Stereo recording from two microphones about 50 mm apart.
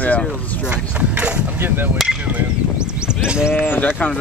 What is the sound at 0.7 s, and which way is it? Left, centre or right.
Speech, right.